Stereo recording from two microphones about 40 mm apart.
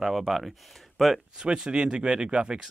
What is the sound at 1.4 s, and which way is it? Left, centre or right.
Speech, centre.